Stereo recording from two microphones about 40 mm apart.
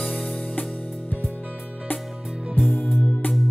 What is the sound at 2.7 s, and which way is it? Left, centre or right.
Music, left.